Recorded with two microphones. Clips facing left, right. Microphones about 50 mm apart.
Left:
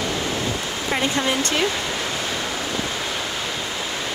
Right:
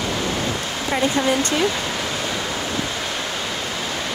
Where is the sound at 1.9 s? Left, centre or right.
Centre.